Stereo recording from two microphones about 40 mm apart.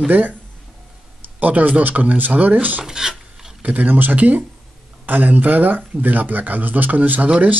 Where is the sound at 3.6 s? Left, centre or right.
Right.